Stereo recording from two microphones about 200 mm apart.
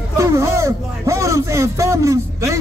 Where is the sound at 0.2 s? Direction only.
15° right (ahead or behind).